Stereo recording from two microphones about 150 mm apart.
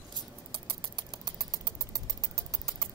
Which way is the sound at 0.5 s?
30° right (ahead or behind).